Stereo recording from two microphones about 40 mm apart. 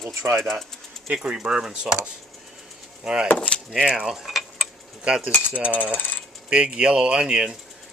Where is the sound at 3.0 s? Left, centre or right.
Right.